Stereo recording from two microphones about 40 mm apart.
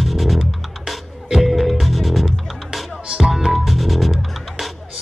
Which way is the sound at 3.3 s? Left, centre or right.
Centre.